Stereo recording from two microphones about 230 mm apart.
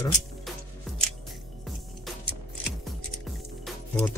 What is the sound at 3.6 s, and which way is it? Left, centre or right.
Music, centre.